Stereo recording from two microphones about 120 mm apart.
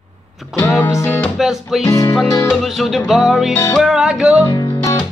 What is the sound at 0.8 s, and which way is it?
Music, 20° left (ahead or behind).